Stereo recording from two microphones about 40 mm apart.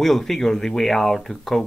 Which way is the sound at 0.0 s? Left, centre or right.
Centre.